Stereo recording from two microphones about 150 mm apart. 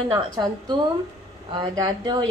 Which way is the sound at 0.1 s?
30° right (ahead or behind).